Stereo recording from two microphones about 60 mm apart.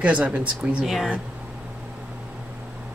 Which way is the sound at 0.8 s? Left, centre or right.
Centre.